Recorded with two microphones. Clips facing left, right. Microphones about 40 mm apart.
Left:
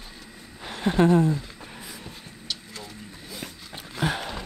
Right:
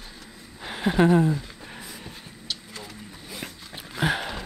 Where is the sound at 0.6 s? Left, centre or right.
Centre.